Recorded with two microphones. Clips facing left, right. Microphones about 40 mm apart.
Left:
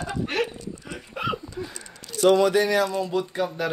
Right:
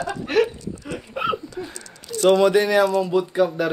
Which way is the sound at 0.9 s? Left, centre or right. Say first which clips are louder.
Right 4 dB; centre.